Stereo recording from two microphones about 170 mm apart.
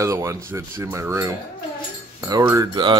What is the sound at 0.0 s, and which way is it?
Speech, 15° right (ahead or behind).